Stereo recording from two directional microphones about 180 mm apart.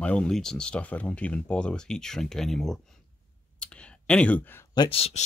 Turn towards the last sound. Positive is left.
turn(degrees=35)  # may be behind; listen again after turning